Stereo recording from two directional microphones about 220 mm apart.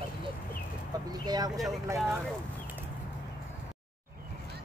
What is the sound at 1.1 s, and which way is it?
Speech, 20° right (ahead or behind).